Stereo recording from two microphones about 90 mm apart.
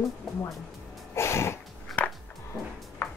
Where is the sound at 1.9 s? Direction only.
Centre (ahead or behind).